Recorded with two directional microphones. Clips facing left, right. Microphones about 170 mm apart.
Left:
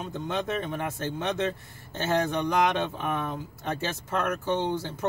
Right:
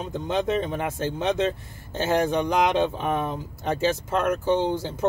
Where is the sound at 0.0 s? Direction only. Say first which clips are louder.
Right 5 dB; 20° right (ahead or behind).